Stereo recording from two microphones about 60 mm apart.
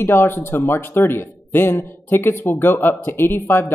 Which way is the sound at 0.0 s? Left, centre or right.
Left.